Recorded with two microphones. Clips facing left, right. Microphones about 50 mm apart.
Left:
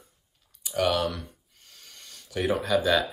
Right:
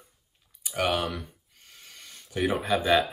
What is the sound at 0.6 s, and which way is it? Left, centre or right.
Typing, centre.